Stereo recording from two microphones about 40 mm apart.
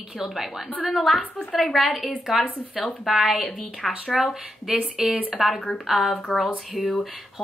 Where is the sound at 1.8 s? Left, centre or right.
Centre.